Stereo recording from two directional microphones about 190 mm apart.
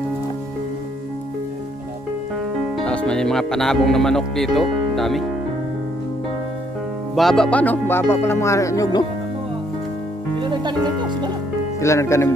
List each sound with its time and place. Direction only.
2.8 s speech: 5° left (ahead or behind)
7.2 s speech: centre (ahead or behind); by 9.0 s 20° left (ahead or behind)
10.4 s music: 25° right (ahead or behind)
11.8 s speech: 15° left (ahead or behind)